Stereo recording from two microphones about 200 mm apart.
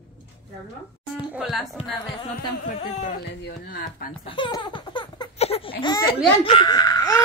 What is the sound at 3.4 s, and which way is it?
Speech, 50° left (ahead or behind).